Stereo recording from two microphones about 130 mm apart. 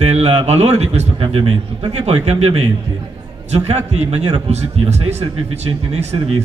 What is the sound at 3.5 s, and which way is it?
Speech, 55° right (ahead or behind).